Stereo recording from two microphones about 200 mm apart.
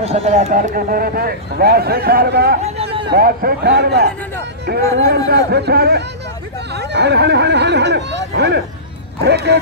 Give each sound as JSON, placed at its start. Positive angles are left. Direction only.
{"t": 0.0, "sound": "speech", "side_deg": -30}
{"t": 2.6, "sound": "a sound", "side_deg": -30}
{"t": 3.1, "sound": "speech", "side_deg": -50}